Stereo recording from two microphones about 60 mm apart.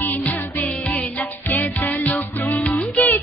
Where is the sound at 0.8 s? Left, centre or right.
Left.